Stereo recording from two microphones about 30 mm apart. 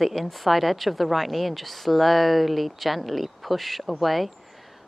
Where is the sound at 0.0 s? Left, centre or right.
Centre.